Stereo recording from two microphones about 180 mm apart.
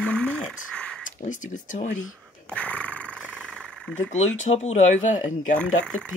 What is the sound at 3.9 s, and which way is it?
Speech, 90° left.